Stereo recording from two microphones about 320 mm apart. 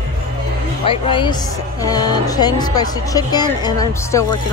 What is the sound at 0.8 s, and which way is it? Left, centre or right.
Speech, centre.